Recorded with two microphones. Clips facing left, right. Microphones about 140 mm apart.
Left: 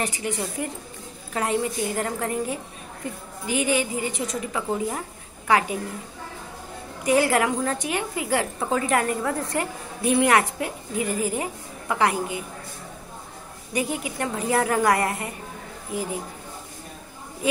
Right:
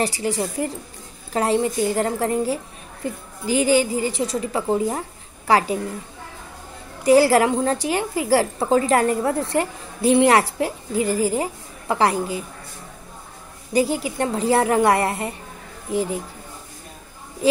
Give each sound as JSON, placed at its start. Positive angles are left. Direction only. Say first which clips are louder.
{"t": 0.0, "sound": "a woman's voice", "louder": "right 5 dB", "side_deg": -35}
{"t": 7.0, "sound": "a woman's voice", "louder": "right 6 dB", "side_deg": -35}
{"t": 13.7, "sound": "a woman's voice", "louder": "right 6 dB", "side_deg": -30}